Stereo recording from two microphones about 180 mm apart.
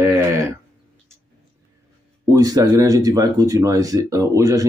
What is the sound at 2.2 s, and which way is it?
Speech, 20° right (ahead or behind).